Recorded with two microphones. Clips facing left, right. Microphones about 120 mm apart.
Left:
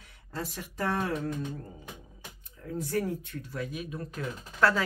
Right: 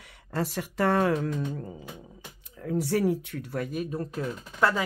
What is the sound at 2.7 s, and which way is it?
Speech, 80° right.